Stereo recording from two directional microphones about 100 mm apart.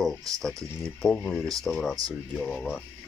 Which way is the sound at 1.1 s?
20° left (ahead or behind).